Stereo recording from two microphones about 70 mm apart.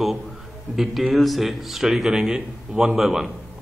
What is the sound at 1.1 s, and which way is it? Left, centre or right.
A man's voice, centre.